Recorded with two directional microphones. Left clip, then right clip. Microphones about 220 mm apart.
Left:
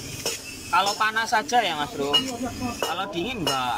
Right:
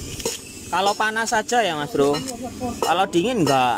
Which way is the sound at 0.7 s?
25° right (ahead or behind).